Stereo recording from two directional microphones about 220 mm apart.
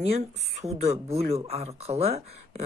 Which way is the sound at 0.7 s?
30° right (ahead or behind).